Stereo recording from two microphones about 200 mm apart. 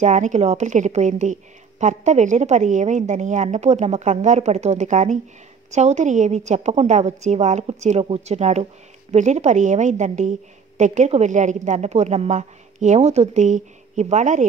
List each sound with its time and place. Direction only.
0.0 s a woman's voice: 35° right (ahead or behind)